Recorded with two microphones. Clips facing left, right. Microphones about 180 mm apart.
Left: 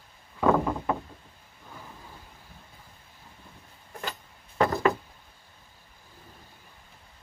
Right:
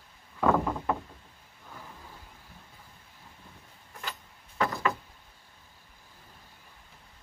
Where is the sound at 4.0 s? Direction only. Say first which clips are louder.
Left 4 dB; 40° left (ahead or behind).